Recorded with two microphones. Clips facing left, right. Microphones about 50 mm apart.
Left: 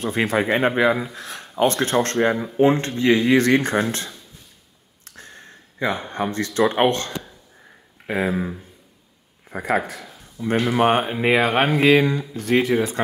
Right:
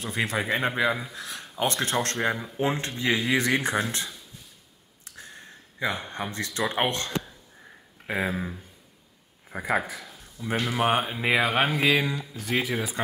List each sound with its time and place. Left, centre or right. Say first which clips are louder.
0.0 s speech: left 7 dB; centre
2.8 s speech: left 8 dB; centre
5.0 s a sound: left 2 dB; centre
5.9 s speech: left 6 dB; centre
8.1 s speech: left 5 dB; centre